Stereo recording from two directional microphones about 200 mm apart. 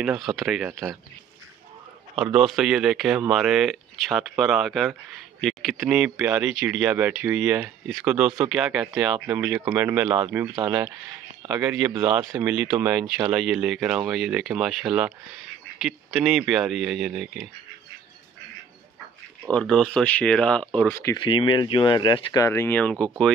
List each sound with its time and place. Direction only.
0.0 s speech: centre (ahead or behind)
0.7 s speech: 15° right (ahead or behind)
2.1 s speech: centre (ahead or behind)
19.5 s speech: 5° left (ahead or behind)
21.2 s speech: 25° left (ahead or behind); by 23.0 s 5° left (ahead or behind)